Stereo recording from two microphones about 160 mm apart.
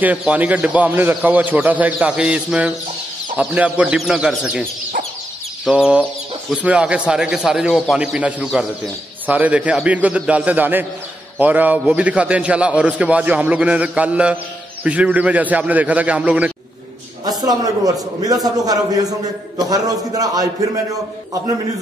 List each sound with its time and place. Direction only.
0.0 s a man's voice: 10° right (ahead or behind)
5.7 s a man's voice: 5° right (ahead or behind)
17.2 s a man's voice: 25° right (ahead or behind)